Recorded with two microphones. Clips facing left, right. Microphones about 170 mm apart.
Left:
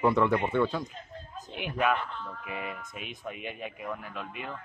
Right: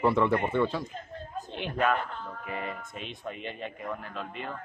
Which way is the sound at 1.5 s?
10° left (ahead or behind).